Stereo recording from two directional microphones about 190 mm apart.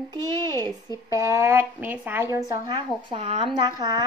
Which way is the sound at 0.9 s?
15° right (ahead or behind).